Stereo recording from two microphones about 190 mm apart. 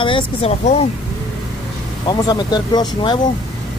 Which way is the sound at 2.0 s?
20° left (ahead or behind).